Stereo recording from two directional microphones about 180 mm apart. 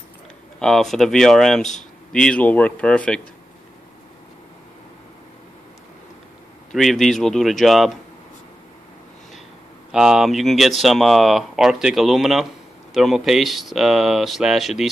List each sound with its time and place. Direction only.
0.6 s speech: centre (ahead or behind)
1.6 s speech: 40° left (ahead or behind)
2.1 s speech: 5° left (ahead or behind)
6.7 s speech: centre (ahead or behind)
9.8 s speech: centre (ahead or behind)